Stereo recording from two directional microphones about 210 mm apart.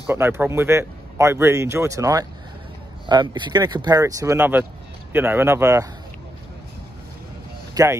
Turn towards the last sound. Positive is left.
turn(degrees=-15)  # may be behind; listen again after turning